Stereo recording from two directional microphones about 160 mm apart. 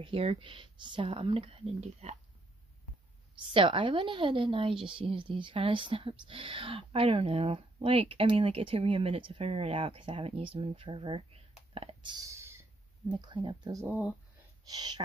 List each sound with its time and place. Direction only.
0.0 s a woman's voice: 35° right (ahead or behind)
3.5 s a woman's voice: 30° right (ahead or behind)
11.7 s a sound: 35° right (ahead or behind)
13.1 s speech: 30° right (ahead or behind)
13.8 s speech: 10° right (ahead or behind)
14.7 s speech: 25° right (ahead or behind)